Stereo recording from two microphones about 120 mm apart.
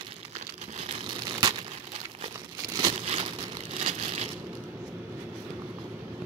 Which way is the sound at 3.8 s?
65° right (ahead or behind).